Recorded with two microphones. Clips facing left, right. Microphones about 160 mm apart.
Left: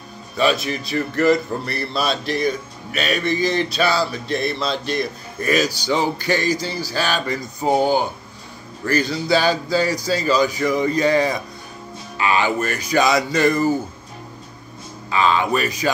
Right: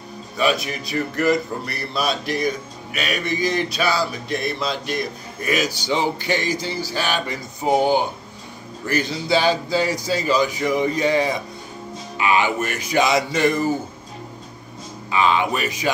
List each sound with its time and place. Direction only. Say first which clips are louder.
0.4 s speech: left 2 dB; 10° right (ahead or behind)
5.7 s speech: left 1 dB; 20° right (ahead or behind)
15.0 s speech: left 1 dB; 15° right (ahead or behind)